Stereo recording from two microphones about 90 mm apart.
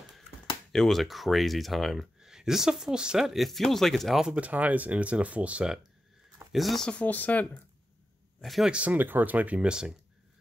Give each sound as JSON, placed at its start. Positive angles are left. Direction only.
{"t": 0.7, "sound": "speech", "side_deg": 5}
{"t": 6.5, "sound": "speech", "side_deg": 0}
{"t": 8.4, "sound": "speech", "side_deg": 0}
{"t": 8.7, "sound": "speech", "side_deg": -20}